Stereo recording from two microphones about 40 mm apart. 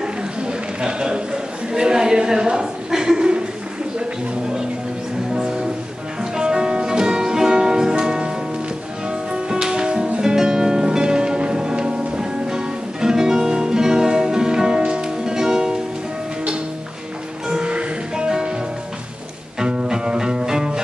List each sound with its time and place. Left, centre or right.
0.0 s a sound: right
5.3 s music: centre
9.3 s music: centre
17.6 s music: right
19.6 s music: right